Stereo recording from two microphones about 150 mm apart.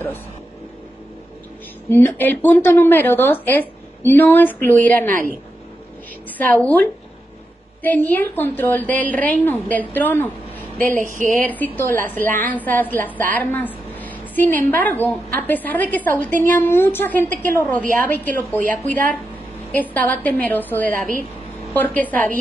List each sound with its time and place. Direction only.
1.9 s speech: 15° left (ahead or behind)
6.3 s speech: 10° left (ahead or behind)
10.8 s speech: 60° right (ahead or behind)
11.4 s a woman's voice: 10° left (ahead or behind)
19.7 s speech: 10° left (ahead or behind)